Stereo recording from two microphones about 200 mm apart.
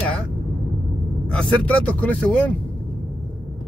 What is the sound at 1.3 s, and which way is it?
Speech, 5° left (ahead or behind).